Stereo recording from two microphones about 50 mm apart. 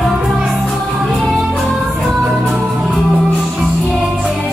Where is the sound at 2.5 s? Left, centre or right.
Centre.